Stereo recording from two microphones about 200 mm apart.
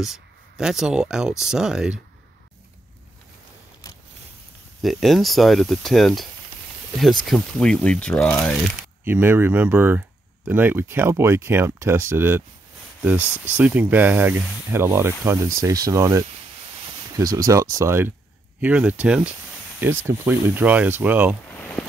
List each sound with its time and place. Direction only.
0.0 s speech: 5° right (ahead or behind)
4.8 s speech: centre (ahead or behind)
7.2 s speech: 5° left (ahead or behind)
9.0 s speech: 10° right (ahead or behind)
13.2 s speech: 10° left (ahead or behind)
13.6 s speech: 10° right (ahead or behind)